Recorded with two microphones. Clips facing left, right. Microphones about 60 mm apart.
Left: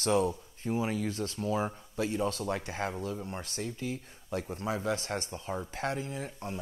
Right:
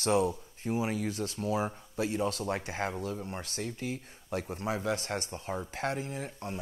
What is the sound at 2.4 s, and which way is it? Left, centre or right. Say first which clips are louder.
Speech: even; right.